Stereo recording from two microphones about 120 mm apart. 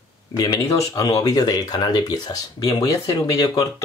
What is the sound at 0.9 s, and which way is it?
Speech, 30° left (ahead or behind).